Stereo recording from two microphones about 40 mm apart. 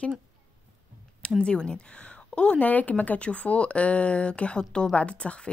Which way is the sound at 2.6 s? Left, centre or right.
Left.